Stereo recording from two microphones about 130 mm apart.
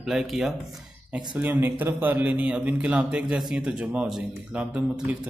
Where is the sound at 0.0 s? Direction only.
5° right (ahead or behind).